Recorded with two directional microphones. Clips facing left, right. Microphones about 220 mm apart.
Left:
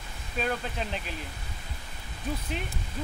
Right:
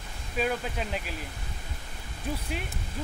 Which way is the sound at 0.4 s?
5° right (ahead or behind).